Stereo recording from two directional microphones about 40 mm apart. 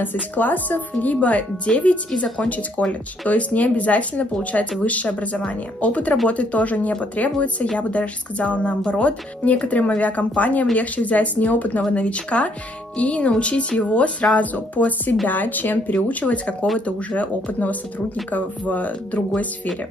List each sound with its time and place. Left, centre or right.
0.0 s speech: left
1.0 s speech: left